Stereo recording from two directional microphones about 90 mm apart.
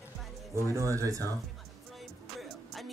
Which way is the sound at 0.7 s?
35° right (ahead or behind).